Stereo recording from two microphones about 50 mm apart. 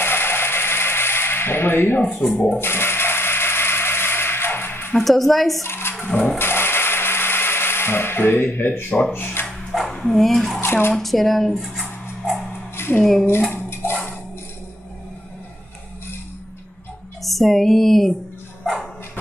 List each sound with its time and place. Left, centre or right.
0.0 s a sound: left
4.9 s speech: centre
5.7 s a sound: left
9.1 s speech: left
9.9 s speech: centre
10.6 s speech: left
11.0 s speech: centre
12.2 s dog: centre
12.7 s a sound: left
13.0 s speech: centre
13.5 s dishes: left
17.2 s a sound: centre
18.6 s dog: centre